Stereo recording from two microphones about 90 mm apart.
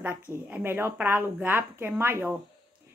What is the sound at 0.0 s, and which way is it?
Speech, 15° right (ahead or behind).